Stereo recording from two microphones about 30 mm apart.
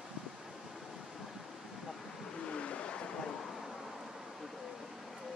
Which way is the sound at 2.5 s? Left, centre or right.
Left.